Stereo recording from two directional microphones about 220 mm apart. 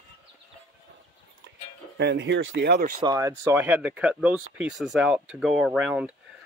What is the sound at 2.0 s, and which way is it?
Speech, 55° right (ahead or behind).